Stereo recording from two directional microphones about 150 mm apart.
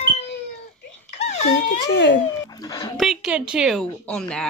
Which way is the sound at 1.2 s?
50° left (ahead or behind).